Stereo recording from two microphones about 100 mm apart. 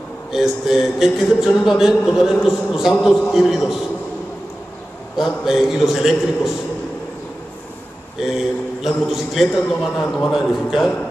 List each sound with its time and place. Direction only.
0.3 s a man's voice: 5° right (ahead or behind)
5.1 s a man's voice: centre (ahead or behind)
8.2 s a man's voice: 5° right (ahead or behind)